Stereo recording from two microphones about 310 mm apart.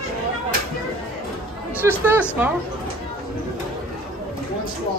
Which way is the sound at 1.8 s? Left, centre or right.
Centre.